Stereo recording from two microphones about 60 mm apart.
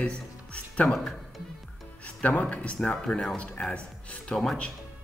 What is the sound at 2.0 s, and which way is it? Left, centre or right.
Speech, left.